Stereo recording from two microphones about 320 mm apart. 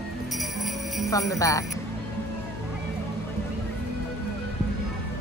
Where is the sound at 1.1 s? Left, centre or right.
Centre.